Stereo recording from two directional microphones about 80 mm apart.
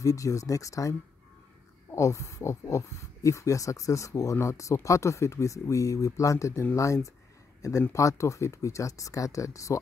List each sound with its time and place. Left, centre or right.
0.0 s speech: left